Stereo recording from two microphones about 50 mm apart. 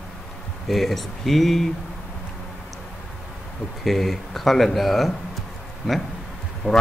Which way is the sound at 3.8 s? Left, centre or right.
Centre.